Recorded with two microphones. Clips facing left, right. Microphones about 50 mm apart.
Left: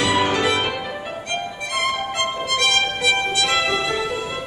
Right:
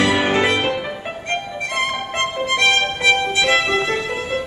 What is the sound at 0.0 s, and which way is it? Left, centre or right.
Music, right.